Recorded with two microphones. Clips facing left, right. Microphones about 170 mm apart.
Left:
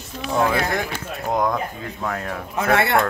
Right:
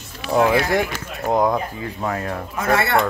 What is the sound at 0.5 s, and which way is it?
Speech, 15° right (ahead or behind).